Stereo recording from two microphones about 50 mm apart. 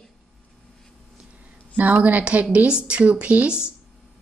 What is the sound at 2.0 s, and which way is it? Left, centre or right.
Speech, right.